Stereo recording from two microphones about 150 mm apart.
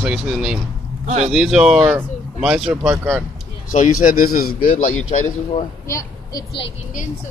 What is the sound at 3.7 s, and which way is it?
A man's voice, 60° left (ahead or behind).